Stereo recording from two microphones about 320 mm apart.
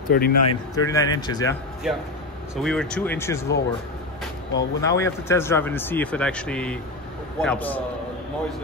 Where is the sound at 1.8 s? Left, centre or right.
Centre.